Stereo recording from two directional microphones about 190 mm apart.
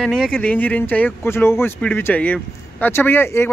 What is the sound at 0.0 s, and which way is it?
Speech, centre (ahead or behind).